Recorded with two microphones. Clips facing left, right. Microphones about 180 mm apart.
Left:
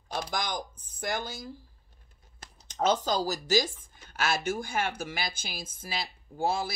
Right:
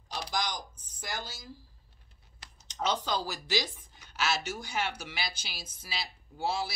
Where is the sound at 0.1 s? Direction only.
50° left (ahead or behind).